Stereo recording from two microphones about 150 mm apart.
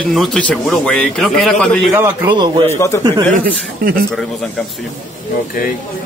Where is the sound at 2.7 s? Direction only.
15° left (ahead or behind).